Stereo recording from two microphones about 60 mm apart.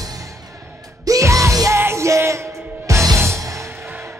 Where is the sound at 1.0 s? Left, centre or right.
Right.